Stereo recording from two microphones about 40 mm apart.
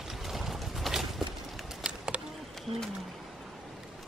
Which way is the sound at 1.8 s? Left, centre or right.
Right.